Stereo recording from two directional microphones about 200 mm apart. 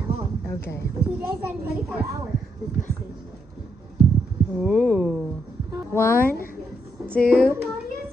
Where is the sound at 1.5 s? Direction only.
5° right (ahead or behind).